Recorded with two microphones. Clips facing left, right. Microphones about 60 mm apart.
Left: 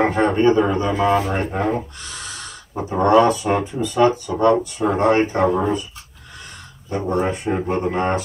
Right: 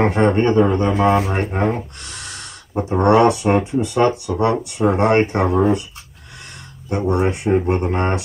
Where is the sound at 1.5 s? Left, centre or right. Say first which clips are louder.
Right 1 dB; right.